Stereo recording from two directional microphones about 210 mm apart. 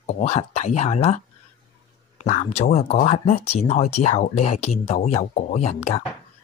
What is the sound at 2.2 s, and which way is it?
Speech, 35° left (ahead or behind).